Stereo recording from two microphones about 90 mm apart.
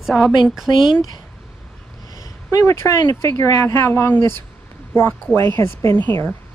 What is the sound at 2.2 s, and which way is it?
Speech, 35° left (ahead or behind).